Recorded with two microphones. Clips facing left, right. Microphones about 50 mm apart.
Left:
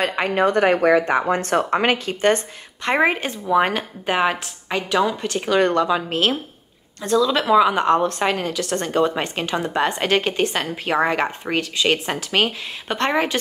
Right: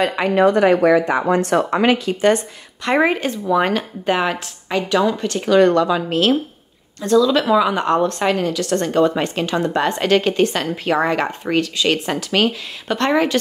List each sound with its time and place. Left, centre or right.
0.0 s speech: left
3.0 s speech: left
5.6 s speech: left